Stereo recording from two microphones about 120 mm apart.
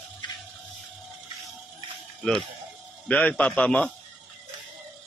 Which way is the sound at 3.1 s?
10° left (ahead or behind).